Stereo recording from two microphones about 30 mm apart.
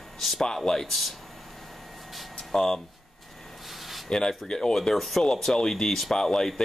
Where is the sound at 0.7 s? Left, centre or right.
Centre.